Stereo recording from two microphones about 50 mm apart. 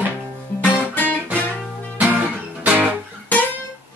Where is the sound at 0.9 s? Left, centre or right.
Left.